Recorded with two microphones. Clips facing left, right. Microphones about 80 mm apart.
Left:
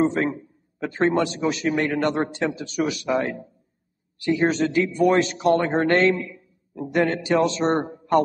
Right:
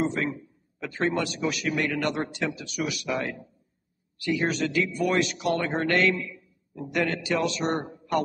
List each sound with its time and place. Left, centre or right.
0.0 s a man's voice: left